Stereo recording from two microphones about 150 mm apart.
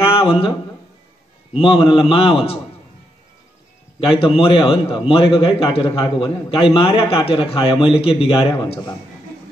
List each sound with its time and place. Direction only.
0.0 s a sound: 40° left (ahead or behind)
1.6 s a man's voice: 35° left (ahead or behind)
4.2 s a man's voice: 35° left (ahead or behind)